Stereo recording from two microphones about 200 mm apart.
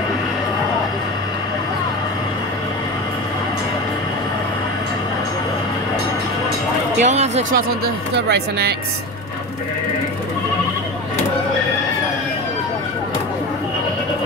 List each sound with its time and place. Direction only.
7.0 s speech: 35° right (ahead or behind)
7.8 s speech: 55° right (ahead or behind)